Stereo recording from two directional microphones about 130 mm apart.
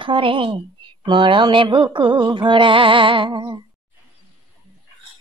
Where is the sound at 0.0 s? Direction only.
40° right (ahead or behind).